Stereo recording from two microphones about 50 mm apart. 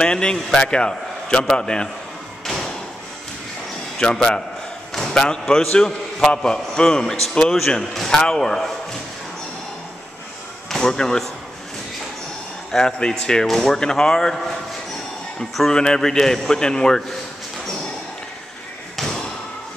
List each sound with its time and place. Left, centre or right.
0.0 s a man's voice: centre
2.4 s thump: centre
4.0 s a man's voice: centre
5.5 s a man's voice: centre
10.7 s speech: centre
12.7 s a man's voice: centre
15.7 s a man's voice: centre
18.9 s thump: centre